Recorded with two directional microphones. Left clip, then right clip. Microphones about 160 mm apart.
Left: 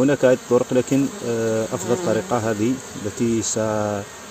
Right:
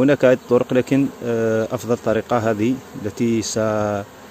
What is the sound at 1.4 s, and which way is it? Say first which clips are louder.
Speech: right 3 dB; 25° right (ahead or behind).